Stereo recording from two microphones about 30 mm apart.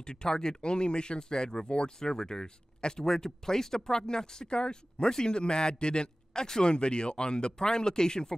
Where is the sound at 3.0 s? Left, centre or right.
Centre.